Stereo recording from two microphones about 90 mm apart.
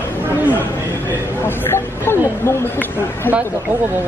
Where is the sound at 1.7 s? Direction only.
25° left (ahead or behind).